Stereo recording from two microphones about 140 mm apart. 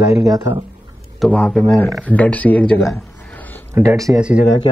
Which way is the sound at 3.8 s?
25° right (ahead or behind).